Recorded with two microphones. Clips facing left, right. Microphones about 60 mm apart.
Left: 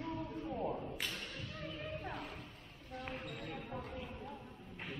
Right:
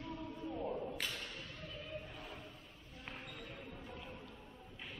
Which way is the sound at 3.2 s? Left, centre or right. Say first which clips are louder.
Left 5 dB; left.